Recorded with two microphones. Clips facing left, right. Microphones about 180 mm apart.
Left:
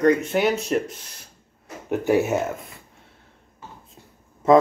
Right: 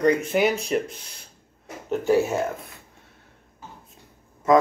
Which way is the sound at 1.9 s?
15° left (ahead or behind).